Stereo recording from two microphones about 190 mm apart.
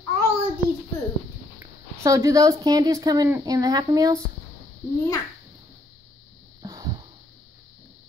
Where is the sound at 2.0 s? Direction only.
15° right (ahead or behind).